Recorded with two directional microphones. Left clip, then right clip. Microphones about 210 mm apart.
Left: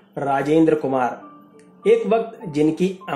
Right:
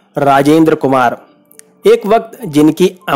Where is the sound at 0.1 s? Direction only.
50° right (ahead or behind).